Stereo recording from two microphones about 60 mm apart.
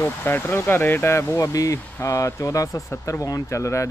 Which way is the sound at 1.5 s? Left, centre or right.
Left.